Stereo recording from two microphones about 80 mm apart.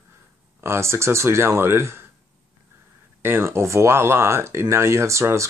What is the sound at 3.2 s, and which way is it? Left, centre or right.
Speech, right.